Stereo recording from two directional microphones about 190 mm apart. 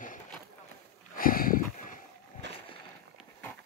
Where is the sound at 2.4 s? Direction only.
65° right (ahead or behind).